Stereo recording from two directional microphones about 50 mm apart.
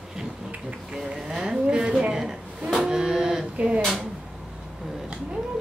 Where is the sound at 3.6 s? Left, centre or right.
Right.